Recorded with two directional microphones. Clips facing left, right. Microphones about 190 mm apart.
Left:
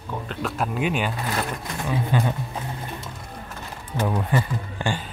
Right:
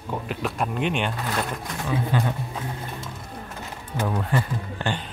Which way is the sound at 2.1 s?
15° left (ahead or behind).